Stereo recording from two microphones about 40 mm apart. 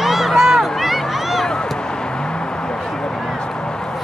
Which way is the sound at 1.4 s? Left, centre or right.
Centre.